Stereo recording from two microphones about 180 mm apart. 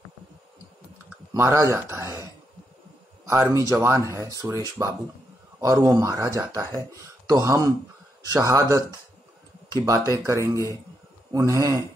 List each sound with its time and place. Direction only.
1.3 s speech: 15° right (ahead or behind)
3.3 s speech: 15° right (ahead or behind)